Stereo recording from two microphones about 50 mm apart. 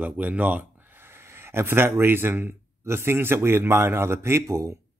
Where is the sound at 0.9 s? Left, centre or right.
Right.